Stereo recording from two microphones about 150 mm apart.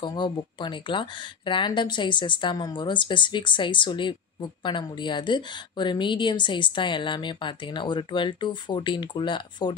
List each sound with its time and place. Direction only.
0.0 s speech: 30° left (ahead or behind)